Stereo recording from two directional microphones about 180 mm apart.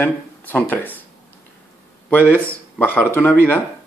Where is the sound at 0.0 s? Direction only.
10° left (ahead or behind).